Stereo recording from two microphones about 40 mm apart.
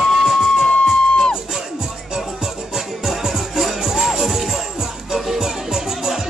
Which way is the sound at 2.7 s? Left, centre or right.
Centre.